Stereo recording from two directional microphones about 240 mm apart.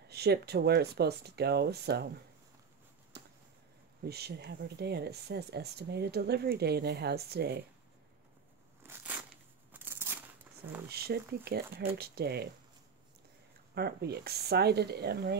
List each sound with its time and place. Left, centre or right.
0.1 s speech: right
4.0 s speech: right
8.8 s a sound: centre
10.9 s speech: right
13.7 s speech: right